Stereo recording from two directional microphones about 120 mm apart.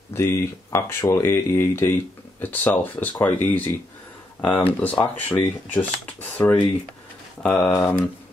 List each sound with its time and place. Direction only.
0.1 s speech: 20° left (ahead or behind)